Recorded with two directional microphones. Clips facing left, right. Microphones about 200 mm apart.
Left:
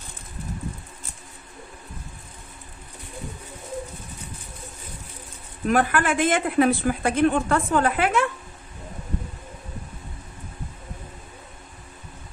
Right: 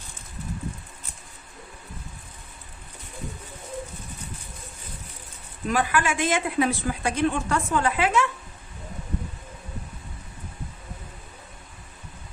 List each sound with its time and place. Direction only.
5.7 s speech: 55° left (ahead or behind)